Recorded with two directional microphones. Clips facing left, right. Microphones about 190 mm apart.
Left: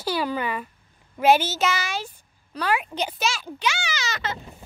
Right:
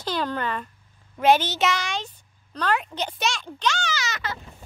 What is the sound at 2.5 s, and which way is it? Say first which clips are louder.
Speech: even; 10° left (ahead or behind).